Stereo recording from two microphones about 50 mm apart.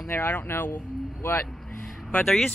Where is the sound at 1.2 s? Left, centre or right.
Left.